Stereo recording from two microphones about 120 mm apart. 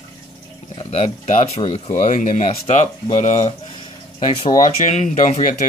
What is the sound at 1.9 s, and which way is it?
Speech, 85° left.